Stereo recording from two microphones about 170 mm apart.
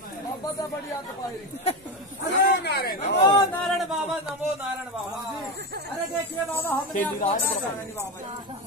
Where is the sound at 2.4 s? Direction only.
70° left (ahead or behind).